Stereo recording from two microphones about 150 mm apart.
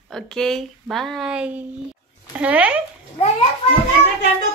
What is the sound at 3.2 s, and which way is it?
Speech, 45° left (ahead or behind).